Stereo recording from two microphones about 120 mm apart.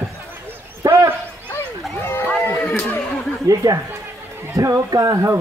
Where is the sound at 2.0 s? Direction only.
20° left (ahead or behind).